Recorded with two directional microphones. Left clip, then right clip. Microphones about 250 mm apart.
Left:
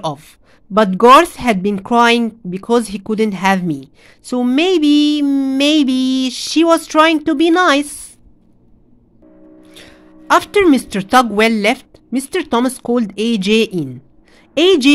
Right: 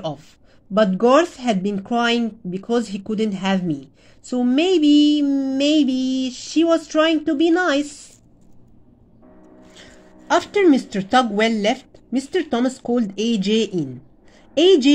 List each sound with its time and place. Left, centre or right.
0.0 s speech: left
9.8 s a woman's voice: left